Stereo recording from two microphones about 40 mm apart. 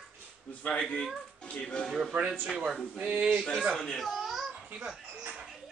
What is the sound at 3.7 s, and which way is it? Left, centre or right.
Speech, centre.